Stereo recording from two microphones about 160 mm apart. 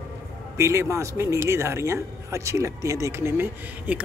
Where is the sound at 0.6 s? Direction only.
20° right (ahead or behind).